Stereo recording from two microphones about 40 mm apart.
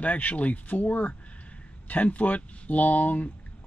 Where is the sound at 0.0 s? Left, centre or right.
Left.